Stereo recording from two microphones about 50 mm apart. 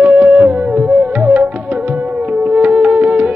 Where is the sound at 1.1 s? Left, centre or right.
Right.